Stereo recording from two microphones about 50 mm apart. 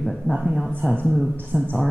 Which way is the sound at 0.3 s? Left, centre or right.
Centre.